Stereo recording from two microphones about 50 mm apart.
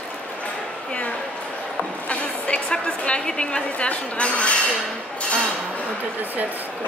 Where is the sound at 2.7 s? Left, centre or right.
Centre.